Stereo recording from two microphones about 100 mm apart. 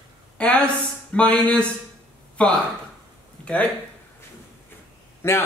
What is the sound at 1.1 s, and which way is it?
Speech, 15° left (ahead or behind).